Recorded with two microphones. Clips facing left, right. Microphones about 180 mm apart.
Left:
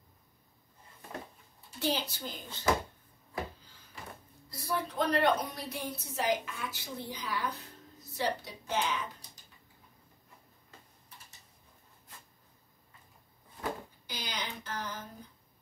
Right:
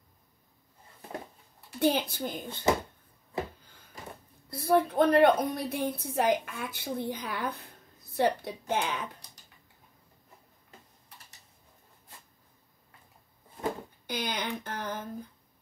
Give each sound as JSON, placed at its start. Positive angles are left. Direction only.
{"t": 1.7, "sound": "a woman's voice", "side_deg": -60}
{"t": 4.5, "sound": "a woman's voice", "side_deg": -55}
{"t": 14.0, "sound": "a woman's voice", "side_deg": -55}